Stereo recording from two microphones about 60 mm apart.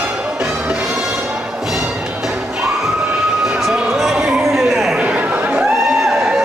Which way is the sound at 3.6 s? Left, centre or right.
Centre.